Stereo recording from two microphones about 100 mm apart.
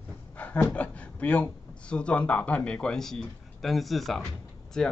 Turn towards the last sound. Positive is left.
turn(degrees=5)  # may be behind; listen again after turning